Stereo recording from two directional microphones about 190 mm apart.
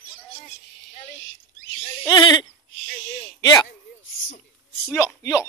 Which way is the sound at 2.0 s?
20° left (ahead or behind).